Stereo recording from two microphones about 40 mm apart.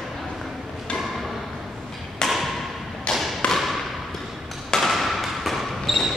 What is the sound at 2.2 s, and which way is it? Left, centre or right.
Thump, centre.